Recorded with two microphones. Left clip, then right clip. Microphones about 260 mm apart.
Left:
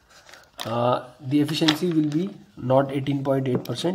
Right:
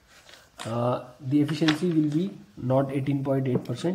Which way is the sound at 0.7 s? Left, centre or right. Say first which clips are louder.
Left 5 dB; left.